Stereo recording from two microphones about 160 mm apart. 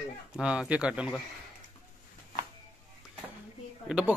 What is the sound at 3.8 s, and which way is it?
Speech, 5° right (ahead or behind).